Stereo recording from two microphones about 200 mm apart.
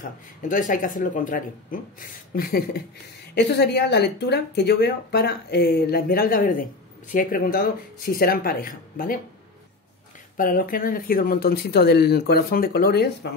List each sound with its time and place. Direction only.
0.4 s a woman's voice: 40° left (ahead or behind)
10.3 s speech: 45° left (ahead or behind)